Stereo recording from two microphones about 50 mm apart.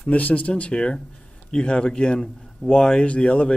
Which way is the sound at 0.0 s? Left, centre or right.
Left.